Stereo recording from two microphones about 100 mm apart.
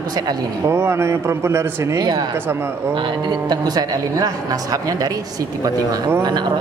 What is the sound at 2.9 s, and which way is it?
Speech, 50° right (ahead or behind).